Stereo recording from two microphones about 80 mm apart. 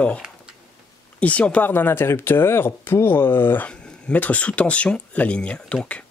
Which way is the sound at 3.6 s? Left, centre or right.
Centre.